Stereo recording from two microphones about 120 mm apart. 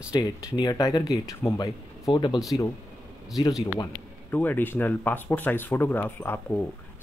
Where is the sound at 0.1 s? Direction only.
35° left (ahead or behind).